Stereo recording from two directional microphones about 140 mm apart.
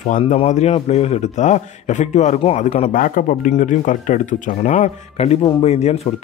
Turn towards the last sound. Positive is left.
turn(degrees=50)  # may be behind; listen again after turning